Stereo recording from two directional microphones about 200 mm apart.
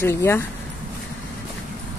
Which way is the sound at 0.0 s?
10° left (ahead or behind).